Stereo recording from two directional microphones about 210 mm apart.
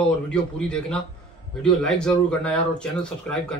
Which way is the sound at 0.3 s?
5° left (ahead or behind).